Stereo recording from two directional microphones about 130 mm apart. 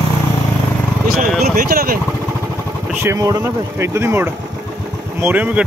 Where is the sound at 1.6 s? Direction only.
90° right.